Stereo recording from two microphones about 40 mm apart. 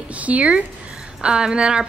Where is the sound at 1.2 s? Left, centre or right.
Right.